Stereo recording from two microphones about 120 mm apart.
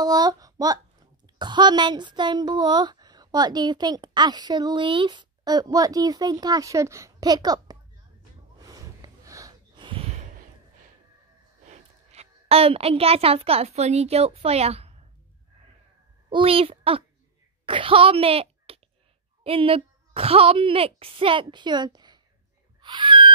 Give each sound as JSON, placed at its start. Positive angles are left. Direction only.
{"t": 0.0, "sound": "speech", "side_deg": -35}
{"t": 8.6, "sound": "gasp", "side_deg": -30}
{"t": 9.8, "sound": "gasp", "side_deg": -45}
{"t": 10.0, "sound": "a sound", "side_deg": -85}
{"t": 11.6, "sound": "a child's voice", "side_deg": -70}
{"t": 16.3, "sound": "a woman's voice", "side_deg": -45}
{"t": 22.8, "sound": "a sound", "side_deg": -40}